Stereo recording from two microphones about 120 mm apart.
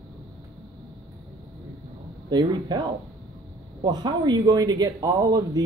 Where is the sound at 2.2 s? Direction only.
35° right (ahead or behind).